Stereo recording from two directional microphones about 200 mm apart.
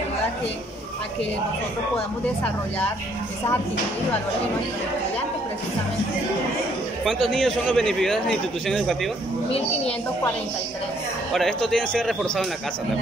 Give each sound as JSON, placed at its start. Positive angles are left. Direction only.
{"t": 7.1, "sound": "a man's voice", "side_deg": 0}
{"t": 11.3, "sound": "a man's voice", "side_deg": 0}